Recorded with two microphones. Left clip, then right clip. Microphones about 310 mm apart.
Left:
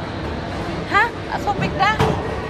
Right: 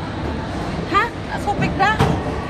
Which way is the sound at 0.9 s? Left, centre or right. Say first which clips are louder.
Left 1 dB; left.